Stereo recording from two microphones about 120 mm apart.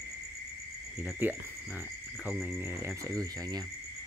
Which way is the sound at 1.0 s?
15° right (ahead or behind).